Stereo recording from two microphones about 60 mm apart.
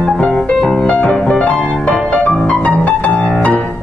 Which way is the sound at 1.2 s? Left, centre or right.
Centre.